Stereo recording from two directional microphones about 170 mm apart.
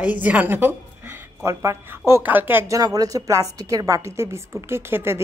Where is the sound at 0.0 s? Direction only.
10° right (ahead or behind).